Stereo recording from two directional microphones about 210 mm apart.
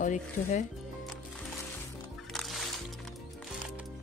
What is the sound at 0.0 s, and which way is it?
Speech, 35° left (ahead or behind).